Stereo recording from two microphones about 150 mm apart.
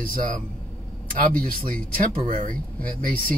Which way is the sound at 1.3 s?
70° right (ahead or behind).